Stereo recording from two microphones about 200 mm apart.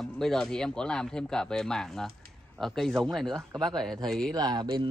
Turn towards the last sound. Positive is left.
turn(degrees=-25)  # may be behind; listen again after turning